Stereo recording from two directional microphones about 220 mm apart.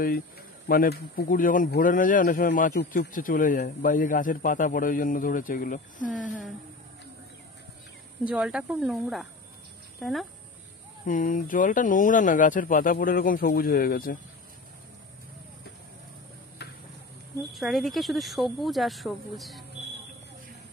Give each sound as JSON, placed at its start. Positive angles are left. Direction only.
{"t": 0.7, "sound": "speech", "side_deg": 45}
{"t": 6.2, "sound": "speech", "side_deg": -5}
{"t": 8.2, "sound": "speech", "side_deg": -5}
{"t": 11.1, "sound": "speech", "side_deg": 35}
{"t": 17.5, "sound": "speech", "side_deg": 0}